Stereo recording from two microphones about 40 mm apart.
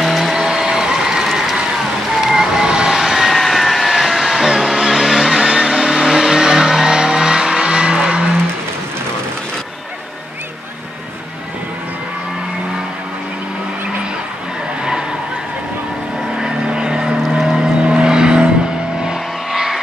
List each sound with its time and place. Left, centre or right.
0.0 s music: centre
2.0 s vehicle: centre
2.9 s vehicle: centre
16.3 s vehicle: centre
19.0 s vehicle: centre